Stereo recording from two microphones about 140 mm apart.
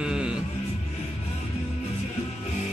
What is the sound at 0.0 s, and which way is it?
Music, 5° right (ahead or behind).